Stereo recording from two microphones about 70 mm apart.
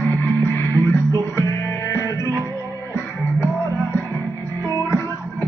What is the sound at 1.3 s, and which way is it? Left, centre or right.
Music, left.